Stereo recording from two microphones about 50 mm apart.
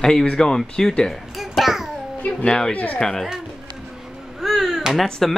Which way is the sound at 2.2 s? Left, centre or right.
Left.